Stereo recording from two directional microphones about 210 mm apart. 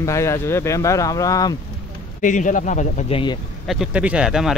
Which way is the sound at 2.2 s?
40° left (ahead or behind).